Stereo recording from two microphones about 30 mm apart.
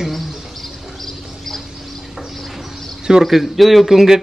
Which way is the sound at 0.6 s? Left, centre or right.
Centre.